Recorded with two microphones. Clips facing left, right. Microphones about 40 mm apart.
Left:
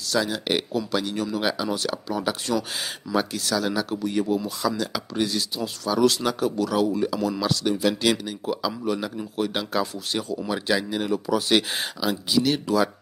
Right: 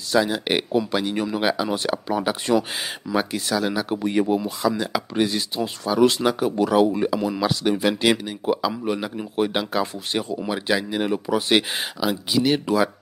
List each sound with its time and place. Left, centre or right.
0.1 s speech: centre
4.4 s speech: centre
9.1 s a man's voice: right
9.5 s speech: centre
10.1 s speech: right
10.5 s speech: centre
11.7 s speech: centre